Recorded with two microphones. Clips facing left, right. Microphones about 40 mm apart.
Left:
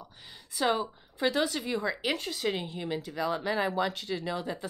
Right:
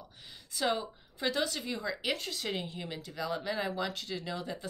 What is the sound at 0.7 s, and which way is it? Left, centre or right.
Speech, centre.